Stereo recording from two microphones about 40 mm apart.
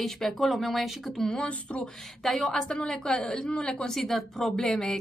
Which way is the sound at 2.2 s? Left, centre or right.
Centre.